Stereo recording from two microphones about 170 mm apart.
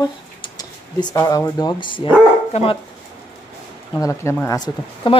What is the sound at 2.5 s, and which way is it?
Speech, 35° left (ahead or behind).